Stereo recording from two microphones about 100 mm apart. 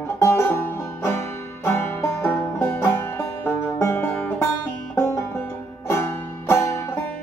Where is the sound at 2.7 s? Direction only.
25° left (ahead or behind).